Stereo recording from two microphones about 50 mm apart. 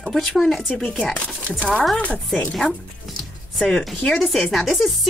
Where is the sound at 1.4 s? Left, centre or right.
Left.